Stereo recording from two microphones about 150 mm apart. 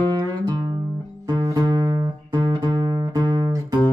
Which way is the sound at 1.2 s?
25° right (ahead or behind).